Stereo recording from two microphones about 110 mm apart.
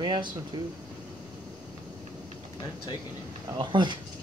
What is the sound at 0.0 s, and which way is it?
Speech, 45° right (ahead or behind).